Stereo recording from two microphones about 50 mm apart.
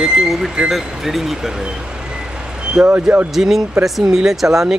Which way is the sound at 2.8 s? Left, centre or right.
Centre.